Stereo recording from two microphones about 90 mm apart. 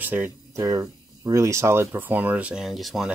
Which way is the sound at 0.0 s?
20° right (ahead or behind).